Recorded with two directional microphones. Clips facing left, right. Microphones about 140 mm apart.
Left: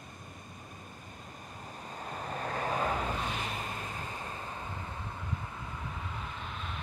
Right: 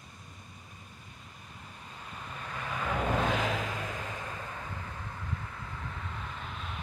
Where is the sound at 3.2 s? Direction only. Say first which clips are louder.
Right 7 dB; 90° right.